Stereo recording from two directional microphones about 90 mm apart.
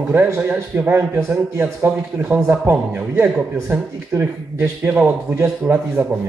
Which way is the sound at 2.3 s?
35° right (ahead or behind).